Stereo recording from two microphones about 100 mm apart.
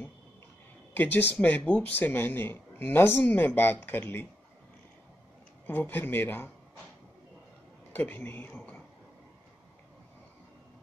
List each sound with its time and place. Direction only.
0.9 s speech: 20° left (ahead or behind)
5.7 s speech: 20° left (ahead or behind)
7.9 s speech: 20° left (ahead or behind)